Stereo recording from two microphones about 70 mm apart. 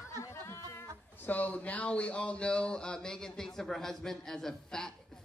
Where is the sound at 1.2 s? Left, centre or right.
Left; by 4.9 s centre.